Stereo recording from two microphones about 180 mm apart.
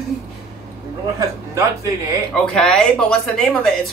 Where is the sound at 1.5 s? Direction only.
15° right (ahead or behind).